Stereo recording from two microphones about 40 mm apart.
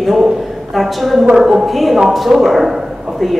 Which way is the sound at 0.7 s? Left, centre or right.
Centre.